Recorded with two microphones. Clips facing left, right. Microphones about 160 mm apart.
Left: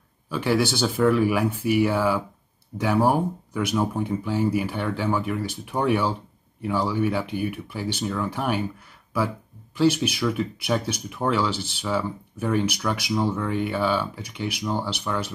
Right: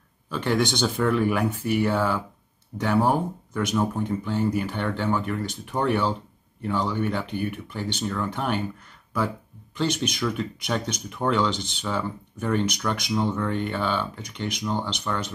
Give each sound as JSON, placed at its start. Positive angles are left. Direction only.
{"t": 0.3, "sound": "speech", "side_deg": 10}
{"t": 9.8, "sound": "speech", "side_deg": 10}